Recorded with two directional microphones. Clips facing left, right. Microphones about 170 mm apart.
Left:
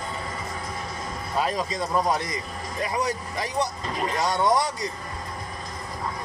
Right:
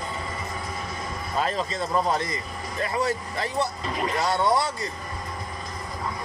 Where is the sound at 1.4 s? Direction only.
10° left (ahead or behind).